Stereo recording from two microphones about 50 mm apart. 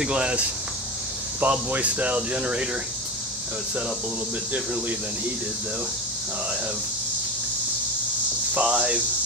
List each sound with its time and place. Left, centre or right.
0.0 s speech: centre
1.4 s speech: right
8.5 s speech: right